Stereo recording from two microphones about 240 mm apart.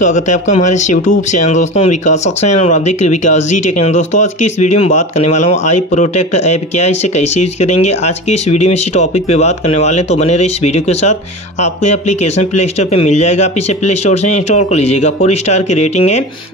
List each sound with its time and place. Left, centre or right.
0.0 s speech: left